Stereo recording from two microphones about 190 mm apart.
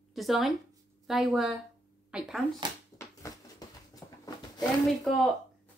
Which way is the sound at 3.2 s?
15° left (ahead or behind).